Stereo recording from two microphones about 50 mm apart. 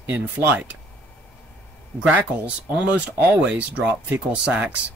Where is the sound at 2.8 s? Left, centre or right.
Right.